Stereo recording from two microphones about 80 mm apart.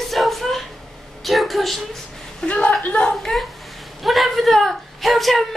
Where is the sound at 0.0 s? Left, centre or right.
Centre.